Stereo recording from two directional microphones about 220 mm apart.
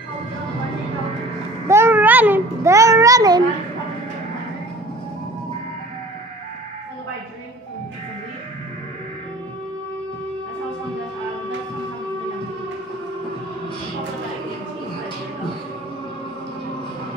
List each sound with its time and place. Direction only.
1.7 s a child's voice: 10° right (ahead or behind)